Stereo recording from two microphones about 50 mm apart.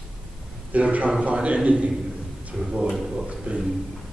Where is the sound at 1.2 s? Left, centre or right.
Right.